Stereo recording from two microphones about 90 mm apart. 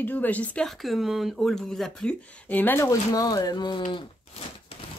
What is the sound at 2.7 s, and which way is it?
Speech, 40° left (ahead or behind).